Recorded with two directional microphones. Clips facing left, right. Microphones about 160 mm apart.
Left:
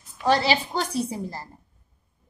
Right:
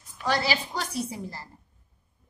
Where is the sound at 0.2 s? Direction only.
25° left (ahead or behind).